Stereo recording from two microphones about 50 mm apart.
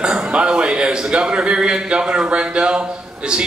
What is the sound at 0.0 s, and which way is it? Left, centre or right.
A man's voice, centre.